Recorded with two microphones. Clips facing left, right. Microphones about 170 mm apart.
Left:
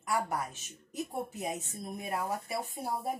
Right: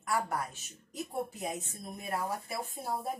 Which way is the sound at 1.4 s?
15° left (ahead or behind).